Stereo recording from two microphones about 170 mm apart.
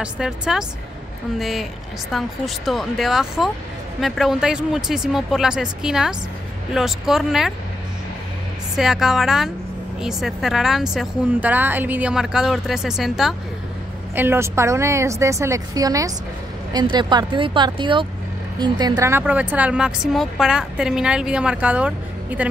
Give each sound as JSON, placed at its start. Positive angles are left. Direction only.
{"t": 0.0, "sound": "a woman's voice", "side_deg": -5}
{"t": 8.7, "sound": "a woman's voice", "side_deg": -5}
{"t": 14.1, "sound": "a woman's voice", "side_deg": -15}